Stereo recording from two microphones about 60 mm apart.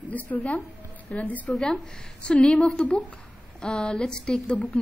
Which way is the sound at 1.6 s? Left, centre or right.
Centre.